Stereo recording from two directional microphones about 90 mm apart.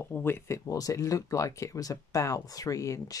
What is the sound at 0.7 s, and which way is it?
Speech, 40° left (ahead or behind).